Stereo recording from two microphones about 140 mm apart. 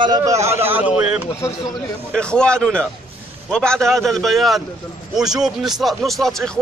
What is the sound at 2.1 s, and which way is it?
A man's voice, 5° left (ahead or behind).